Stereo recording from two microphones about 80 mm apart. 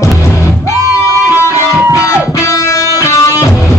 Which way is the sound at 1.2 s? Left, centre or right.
Left.